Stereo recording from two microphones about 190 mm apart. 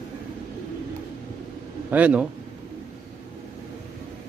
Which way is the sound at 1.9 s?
5° right (ahead or behind).